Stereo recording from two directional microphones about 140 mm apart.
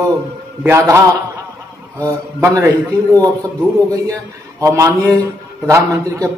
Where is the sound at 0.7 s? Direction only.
20° right (ahead or behind).